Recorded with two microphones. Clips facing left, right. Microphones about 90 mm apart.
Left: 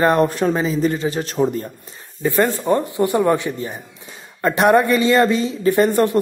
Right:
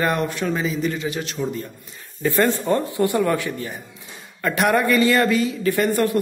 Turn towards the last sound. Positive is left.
turn(degrees=25)  # may be behind; listen again after turning